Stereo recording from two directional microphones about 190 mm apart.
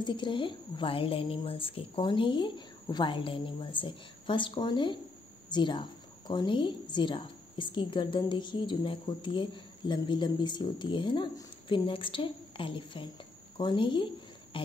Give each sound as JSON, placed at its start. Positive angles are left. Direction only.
{"t": 0.0, "sound": "a woman's voice", "side_deg": 25}